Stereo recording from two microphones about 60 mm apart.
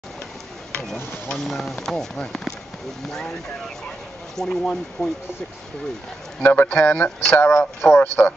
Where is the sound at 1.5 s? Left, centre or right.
Centre.